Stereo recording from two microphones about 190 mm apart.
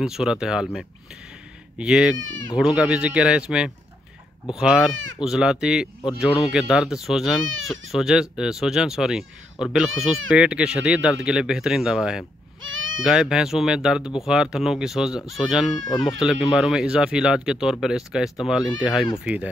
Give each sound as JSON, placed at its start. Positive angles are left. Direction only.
{"t": 0.0, "sound": "speech", "side_deg": -5}
{"t": 1.8, "sound": "speech", "side_deg": -5}
{"t": 12.6, "sound": "bleat", "side_deg": -90}
{"t": 13.0, "sound": "speech", "side_deg": -5}